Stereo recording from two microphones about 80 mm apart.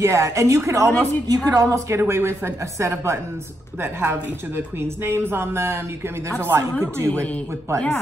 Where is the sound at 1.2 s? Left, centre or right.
Right.